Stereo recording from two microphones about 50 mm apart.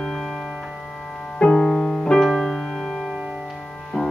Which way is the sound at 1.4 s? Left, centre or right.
Centre.